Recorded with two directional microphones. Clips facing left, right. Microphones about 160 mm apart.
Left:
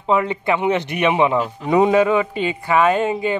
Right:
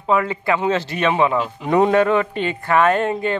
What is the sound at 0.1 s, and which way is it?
Speech, 20° left (ahead or behind).